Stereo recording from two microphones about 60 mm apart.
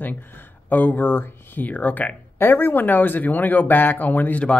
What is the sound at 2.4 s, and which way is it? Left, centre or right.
Speech, left.